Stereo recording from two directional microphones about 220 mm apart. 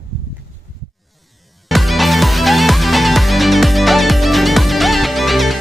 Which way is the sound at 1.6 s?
Centre (ahead or behind).